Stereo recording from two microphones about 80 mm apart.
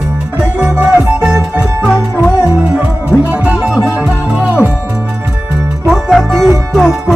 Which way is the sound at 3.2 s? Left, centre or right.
Centre.